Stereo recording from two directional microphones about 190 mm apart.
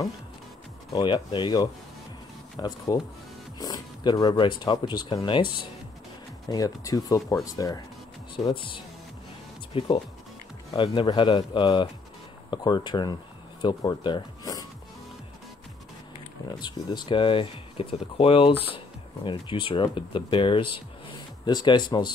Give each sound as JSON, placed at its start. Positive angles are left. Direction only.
{"t": 0.9, "sound": "speech", "side_deg": 25}
{"t": 16.6, "sound": "speech", "side_deg": 25}